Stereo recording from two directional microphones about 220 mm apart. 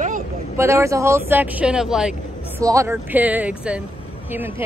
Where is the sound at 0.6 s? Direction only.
15° right (ahead or behind).